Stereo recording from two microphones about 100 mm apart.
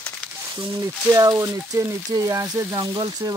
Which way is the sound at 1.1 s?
35° right (ahead or behind).